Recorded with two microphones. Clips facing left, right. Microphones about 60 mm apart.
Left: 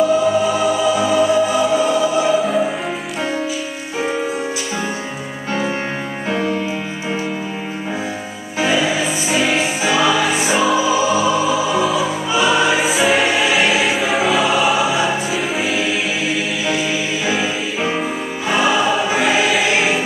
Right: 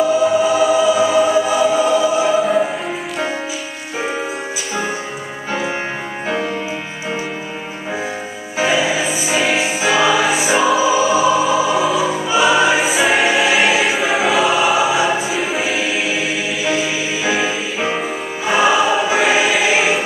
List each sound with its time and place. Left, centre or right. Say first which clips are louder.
0.5 s music: right 3 dB; centre
4.0 s music: left 2 dB; centre
6.2 s music: left 1 dB; centre
8.5 s music: right 1 dB; centre
18.5 s choir: right 2 dB; centre